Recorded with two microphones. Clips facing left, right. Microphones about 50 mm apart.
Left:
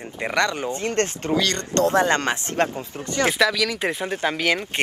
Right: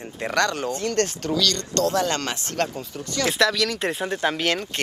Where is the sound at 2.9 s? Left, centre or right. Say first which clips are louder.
Left 3 dB; left.